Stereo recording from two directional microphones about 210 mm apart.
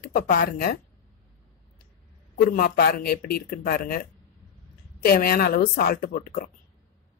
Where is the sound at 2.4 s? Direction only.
45° left (ahead or behind).